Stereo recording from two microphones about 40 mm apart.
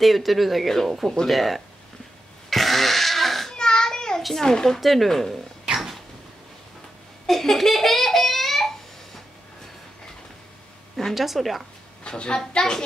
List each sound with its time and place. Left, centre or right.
0.0 s speech: centre
2.5 s a sound: centre
3.5 s a sound: centre
4.4 s speech: centre
4.7 s speech: centre
7.2 s speech: centre
11.1 s speech: centre
12.0 s a child's voice: left